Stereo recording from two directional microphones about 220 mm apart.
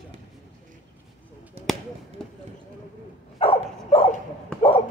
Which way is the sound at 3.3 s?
25° left (ahead or behind).